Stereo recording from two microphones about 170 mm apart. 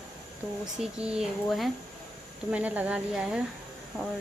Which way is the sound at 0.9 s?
5° right (ahead or behind).